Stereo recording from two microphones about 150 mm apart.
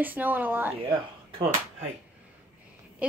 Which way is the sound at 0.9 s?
35° right (ahead or behind).